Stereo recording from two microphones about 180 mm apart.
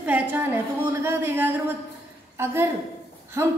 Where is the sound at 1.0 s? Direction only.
10° right (ahead or behind).